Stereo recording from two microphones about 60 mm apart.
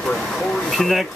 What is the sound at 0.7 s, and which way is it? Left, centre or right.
Speech, centre.